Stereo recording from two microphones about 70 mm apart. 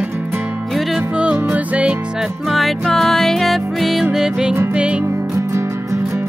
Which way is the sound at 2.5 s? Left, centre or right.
Centre.